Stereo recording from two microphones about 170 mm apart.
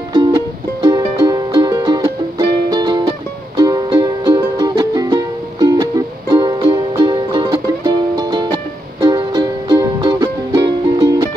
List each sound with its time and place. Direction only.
0.1 s music: 25° right (ahead or behind)